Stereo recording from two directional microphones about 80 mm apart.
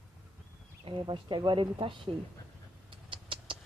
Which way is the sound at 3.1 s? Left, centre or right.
Right.